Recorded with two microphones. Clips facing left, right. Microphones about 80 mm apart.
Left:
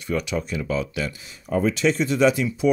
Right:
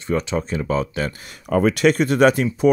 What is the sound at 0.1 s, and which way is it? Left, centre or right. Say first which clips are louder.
Speech: right 3 dB; right.